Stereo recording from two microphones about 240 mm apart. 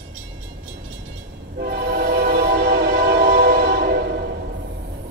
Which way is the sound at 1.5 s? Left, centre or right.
Right.